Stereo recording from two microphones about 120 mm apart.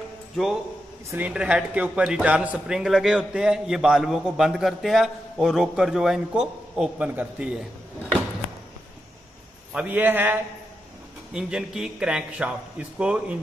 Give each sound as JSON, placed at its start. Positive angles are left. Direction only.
{"t": 1.1, "sound": "speech", "side_deg": -10}
{"t": 9.8, "sound": "a man's voice", "side_deg": -15}
{"t": 11.3, "sound": "a man's voice", "side_deg": -5}